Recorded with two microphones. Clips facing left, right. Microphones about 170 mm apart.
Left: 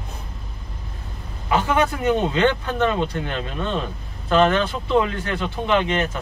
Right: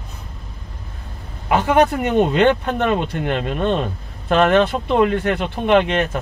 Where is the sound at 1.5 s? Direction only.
60° right (ahead or behind).